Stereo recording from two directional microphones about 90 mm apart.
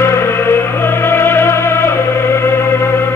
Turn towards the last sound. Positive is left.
turn(degrees=25)  # may be behind; listen again after turning